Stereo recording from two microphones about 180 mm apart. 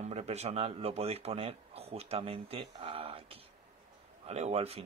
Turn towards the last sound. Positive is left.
turn(degrees=-35)  # may be behind; listen again after turning